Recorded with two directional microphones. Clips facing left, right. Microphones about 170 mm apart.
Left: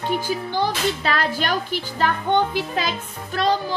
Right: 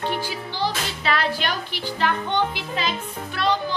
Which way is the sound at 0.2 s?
50° left (ahead or behind).